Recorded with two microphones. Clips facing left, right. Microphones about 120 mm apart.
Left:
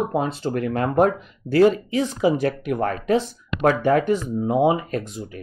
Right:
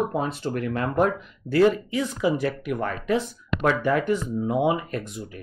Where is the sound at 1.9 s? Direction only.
30° left (ahead or behind).